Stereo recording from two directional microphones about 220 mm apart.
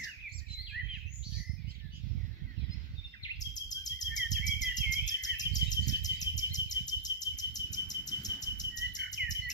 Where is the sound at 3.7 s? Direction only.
15° left (ahead or behind).